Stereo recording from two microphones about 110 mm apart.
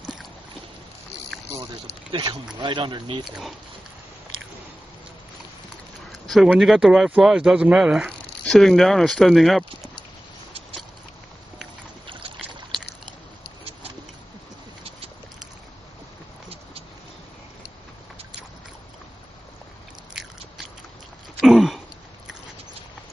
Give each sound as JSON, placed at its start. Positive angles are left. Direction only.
{"t": 1.3, "sound": "a sound", "side_deg": 5}
{"t": 2.1, "sound": "speech", "side_deg": -55}
{"t": 2.6, "sound": "speech", "side_deg": -45}
{"t": 3.3, "sound": "speech", "side_deg": 0}
{"t": 6.3, "sound": "speech", "side_deg": 0}
{"t": 12.1, "sound": "boat", "side_deg": -50}
{"t": 21.4, "sound": "a sound", "side_deg": 0}